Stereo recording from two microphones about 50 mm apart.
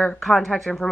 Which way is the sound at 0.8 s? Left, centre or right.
Left.